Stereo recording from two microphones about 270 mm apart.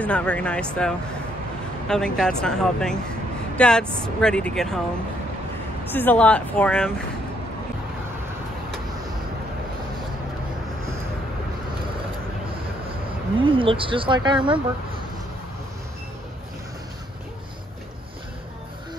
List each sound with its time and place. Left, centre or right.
0.0 s speech: centre
5.9 s speech: centre
13.5 s speech: centre